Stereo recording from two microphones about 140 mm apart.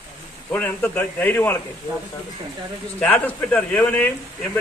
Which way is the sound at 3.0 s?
10° left (ahead or behind).